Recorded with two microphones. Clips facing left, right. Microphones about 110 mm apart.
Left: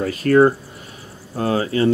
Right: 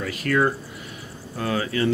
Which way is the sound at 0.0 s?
35° left (ahead or behind).